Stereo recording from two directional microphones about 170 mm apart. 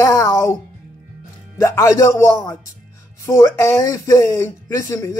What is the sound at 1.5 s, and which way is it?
Speech, 15° left (ahead or behind).